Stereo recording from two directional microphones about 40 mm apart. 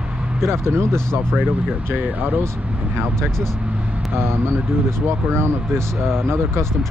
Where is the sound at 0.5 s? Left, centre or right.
Right.